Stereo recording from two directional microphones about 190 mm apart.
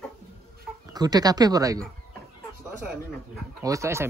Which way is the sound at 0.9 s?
20° right (ahead or behind).